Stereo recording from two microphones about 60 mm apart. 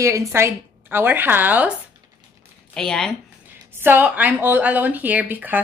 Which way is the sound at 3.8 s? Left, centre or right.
Right.